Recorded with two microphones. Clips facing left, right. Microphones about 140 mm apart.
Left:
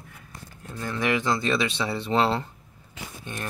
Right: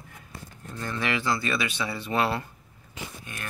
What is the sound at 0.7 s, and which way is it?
Speech, 10° left (ahead or behind).